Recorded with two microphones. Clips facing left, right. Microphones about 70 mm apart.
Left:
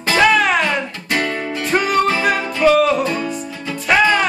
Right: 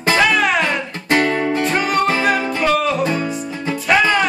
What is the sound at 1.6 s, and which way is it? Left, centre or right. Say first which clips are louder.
Music: left 5 dB; centre.